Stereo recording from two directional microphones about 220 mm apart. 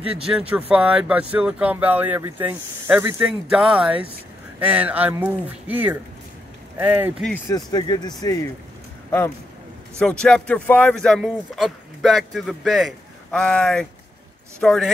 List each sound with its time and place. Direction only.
0.3 s speech: 5° right (ahead or behind)
7.4 s speech: 20° left (ahead or behind)
9.9 s speech: 5° left (ahead or behind)